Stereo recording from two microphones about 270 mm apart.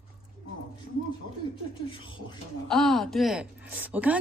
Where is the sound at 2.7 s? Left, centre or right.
Centre.